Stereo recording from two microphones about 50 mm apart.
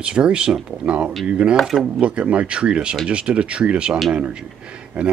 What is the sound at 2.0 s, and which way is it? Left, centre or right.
Speech, right.